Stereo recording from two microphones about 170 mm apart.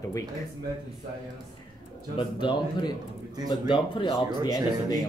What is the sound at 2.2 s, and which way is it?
Speech, 30° left (ahead or behind).